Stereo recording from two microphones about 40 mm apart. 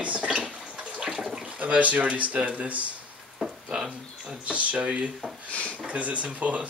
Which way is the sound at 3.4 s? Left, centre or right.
Right.